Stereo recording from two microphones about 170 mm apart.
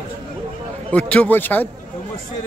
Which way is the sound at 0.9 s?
5° left (ahead or behind).